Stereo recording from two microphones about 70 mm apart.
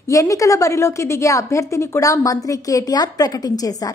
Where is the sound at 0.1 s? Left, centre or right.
Left.